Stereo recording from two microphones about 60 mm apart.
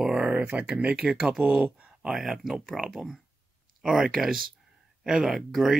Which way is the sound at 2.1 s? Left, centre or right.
Centre.